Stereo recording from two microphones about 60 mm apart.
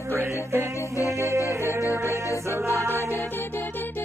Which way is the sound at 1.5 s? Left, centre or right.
Right.